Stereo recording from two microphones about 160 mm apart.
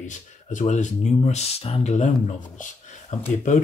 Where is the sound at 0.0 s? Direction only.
50° left (ahead or behind).